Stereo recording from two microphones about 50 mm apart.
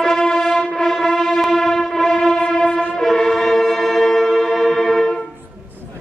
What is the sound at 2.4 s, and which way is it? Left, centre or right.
Train, left.